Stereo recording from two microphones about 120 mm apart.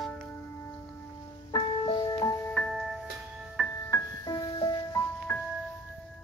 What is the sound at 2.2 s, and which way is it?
Music, 25° left (ahead or behind).